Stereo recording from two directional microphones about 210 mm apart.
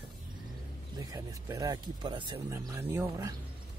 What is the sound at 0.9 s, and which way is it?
Speech, 15° right (ahead or behind).